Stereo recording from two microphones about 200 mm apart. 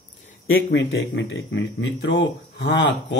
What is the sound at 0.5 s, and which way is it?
Speech, 65° left (ahead or behind).